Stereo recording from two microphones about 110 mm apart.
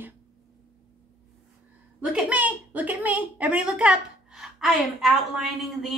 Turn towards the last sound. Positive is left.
turn(degrees=-5)  # may be behind; listen again after turning